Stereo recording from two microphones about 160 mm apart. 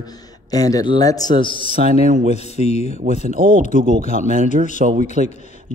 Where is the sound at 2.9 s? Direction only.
55° right (ahead or behind).